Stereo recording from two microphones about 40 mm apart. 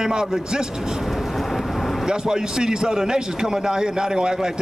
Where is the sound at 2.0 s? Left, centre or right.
Centre.